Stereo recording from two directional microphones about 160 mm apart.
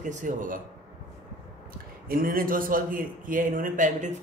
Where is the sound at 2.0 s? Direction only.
65° right (ahead or behind).